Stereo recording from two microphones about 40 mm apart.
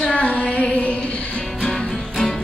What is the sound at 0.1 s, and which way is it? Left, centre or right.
Music, left.